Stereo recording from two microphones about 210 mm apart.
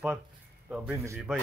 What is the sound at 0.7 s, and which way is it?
Speech, 5° right (ahead or behind).